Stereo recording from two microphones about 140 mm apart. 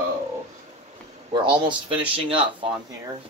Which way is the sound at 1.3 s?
35° right (ahead or behind).